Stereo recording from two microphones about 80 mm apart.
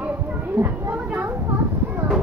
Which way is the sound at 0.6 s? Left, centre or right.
Right.